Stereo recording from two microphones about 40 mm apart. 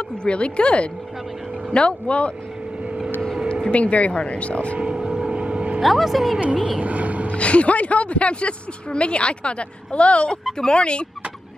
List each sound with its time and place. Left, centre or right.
0.2 s a woman's voice: left
3.7 s speech: left
4.9 s vehicle: centre
5.3 s vehicle: right
5.8 s a woman's voice: centre
6.4 s speech: right
6.8 s vehicle: right
7.3 s a woman's voice: left